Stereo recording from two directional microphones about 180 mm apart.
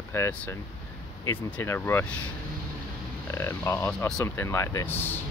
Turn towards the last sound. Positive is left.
turn(degrees=10)  # may be behind; listen again after turning